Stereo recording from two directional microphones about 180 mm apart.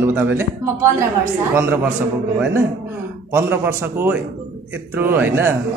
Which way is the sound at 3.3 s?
15° right (ahead or behind).